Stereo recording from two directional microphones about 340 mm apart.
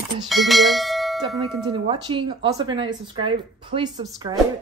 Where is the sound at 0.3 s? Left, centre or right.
Centre.